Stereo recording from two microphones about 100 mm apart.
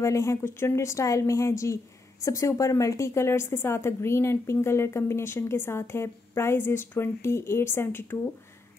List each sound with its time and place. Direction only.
0.0 s a woman's voice: 30° left (ahead or behind)